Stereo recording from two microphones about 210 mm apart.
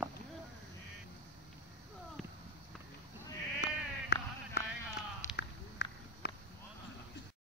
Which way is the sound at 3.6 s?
55° left (ahead or behind).